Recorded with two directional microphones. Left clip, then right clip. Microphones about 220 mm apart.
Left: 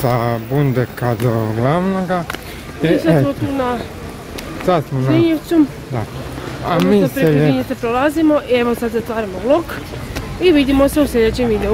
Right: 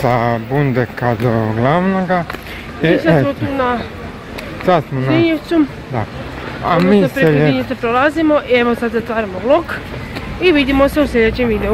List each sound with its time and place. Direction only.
0.0 s speech: centre (ahead or behind)
3.5 s speech: 20° left (ahead or behind)
4.6 s speech: centre (ahead or behind)
5.1 s speech: 25° left (ahead or behind)
6.6 s speech: centre (ahead or behind)
7.5 s speech: 25° left (ahead or behind)